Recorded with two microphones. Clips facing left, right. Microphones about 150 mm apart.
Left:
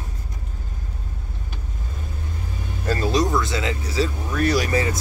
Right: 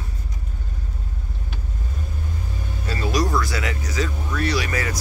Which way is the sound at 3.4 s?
25° left (ahead or behind).